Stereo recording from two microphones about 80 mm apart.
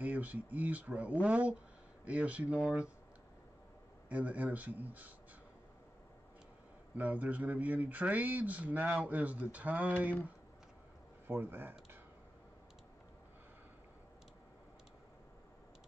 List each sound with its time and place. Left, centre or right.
0.0 s speech: centre
4.1 s speech: centre
7.0 s speech: centre
11.2 s speech: right